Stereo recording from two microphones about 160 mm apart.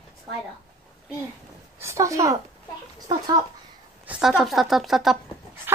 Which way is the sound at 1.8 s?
20° right (ahead or behind).